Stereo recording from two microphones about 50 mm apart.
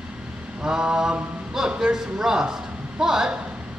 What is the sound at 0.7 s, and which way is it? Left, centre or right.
A man's voice, centre.